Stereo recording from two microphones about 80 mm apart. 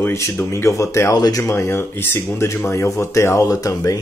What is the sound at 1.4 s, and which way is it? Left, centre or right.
Speech, left.